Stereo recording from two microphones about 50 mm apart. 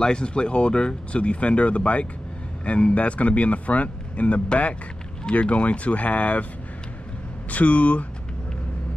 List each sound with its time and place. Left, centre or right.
0.0 s speech: centre
7.5 s speech: left